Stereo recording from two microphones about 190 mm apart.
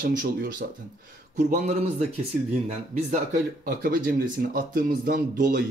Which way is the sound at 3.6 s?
50° right (ahead or behind).